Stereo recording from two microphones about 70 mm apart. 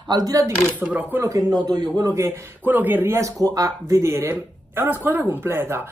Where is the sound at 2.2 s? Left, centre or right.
Right.